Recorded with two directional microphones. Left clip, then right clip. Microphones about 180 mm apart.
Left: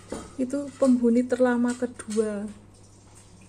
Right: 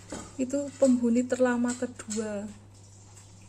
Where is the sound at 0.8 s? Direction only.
Centre (ahead or behind).